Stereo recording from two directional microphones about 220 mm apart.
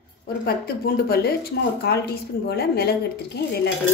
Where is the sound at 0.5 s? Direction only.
45° left (ahead or behind).